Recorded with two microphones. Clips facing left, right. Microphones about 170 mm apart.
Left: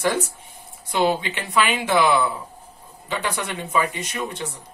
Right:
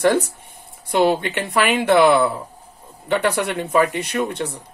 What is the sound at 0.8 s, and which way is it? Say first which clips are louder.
Speech: right 4 dB; 60° right (ahead or behind).